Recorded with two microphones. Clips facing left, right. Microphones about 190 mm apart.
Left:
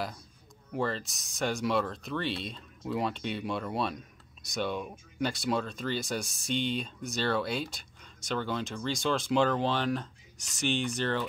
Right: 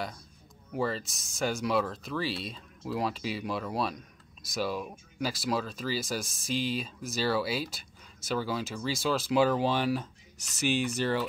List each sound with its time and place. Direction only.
0.7 s speech: centre (ahead or behind)